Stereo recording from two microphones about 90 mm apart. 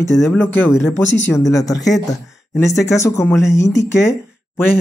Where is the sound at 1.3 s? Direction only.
40° left (ahead or behind).